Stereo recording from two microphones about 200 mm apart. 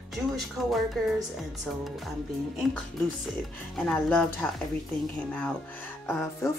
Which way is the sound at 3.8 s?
5° left (ahead or behind).